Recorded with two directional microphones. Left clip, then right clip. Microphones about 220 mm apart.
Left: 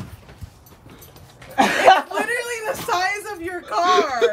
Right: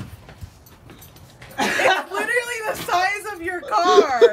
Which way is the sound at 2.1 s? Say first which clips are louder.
Right 1 dB; 5° right (ahead or behind).